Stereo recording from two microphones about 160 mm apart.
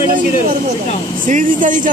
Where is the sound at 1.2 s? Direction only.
55° right (ahead or behind).